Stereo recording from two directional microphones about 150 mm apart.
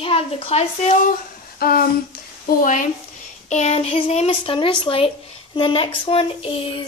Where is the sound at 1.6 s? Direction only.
85° left.